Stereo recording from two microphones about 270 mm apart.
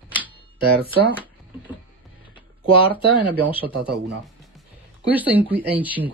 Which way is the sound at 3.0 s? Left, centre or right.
Centre.